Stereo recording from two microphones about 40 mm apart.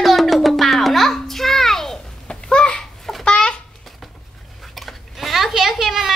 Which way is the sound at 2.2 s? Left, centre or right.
Left.